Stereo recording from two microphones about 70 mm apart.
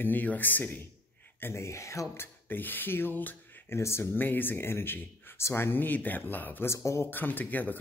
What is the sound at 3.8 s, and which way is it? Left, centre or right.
Speech, left.